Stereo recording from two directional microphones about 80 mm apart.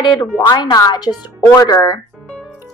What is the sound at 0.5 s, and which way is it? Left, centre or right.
Speech, left.